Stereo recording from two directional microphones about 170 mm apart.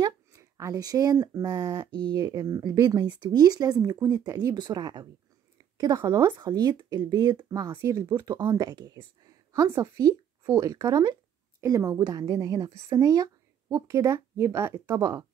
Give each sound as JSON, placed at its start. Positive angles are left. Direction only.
{"t": 0.0, "sound": "a woman's voice", "side_deg": -20}